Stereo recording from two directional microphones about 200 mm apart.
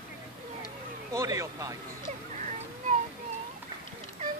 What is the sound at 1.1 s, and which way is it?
Speech, 15° right (ahead or behind).